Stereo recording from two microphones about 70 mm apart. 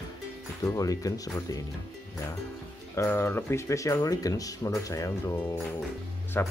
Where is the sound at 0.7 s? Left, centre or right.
Left.